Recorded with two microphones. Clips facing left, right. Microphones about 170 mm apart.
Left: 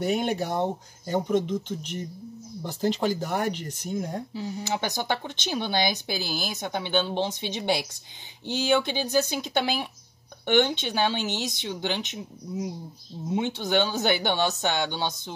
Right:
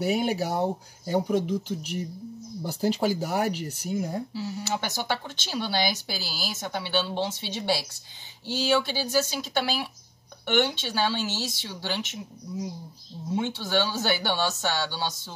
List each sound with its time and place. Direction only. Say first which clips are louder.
0.0 s speech: even; 5° right (ahead or behind)
4.3 s speech: even; 15° left (ahead or behind)
13.4 s speech: left 2 dB; 20° left (ahead or behind)